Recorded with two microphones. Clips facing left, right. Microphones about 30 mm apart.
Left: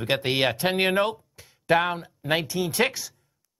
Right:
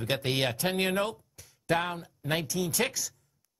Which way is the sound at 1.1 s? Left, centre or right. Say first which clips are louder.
Left 6 dB; left.